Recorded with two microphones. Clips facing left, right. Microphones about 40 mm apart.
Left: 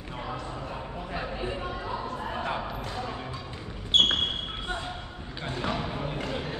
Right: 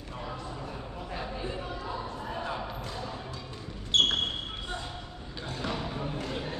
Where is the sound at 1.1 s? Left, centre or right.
Left.